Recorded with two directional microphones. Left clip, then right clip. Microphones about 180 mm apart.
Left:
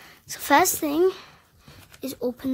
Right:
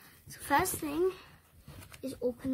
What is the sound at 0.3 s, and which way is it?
A woman's voice, 45° left (ahead or behind).